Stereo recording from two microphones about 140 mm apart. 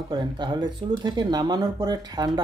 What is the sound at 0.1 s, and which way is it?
Speech, 30° right (ahead or behind).